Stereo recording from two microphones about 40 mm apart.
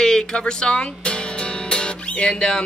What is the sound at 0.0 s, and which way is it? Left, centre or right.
Music, centre.